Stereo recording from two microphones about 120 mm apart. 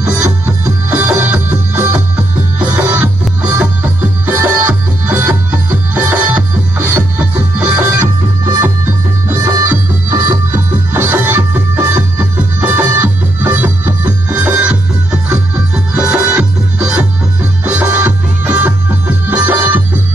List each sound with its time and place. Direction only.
0.0 s music: 30° right (ahead or behind)
0.8 s music: 15° right (ahead or behind)
7.8 s music: 30° right (ahead or behind); by 19.8 s 15° right (ahead or behind)